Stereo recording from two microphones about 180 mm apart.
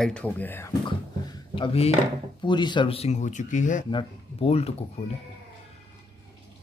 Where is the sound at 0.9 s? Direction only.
25° left (ahead or behind).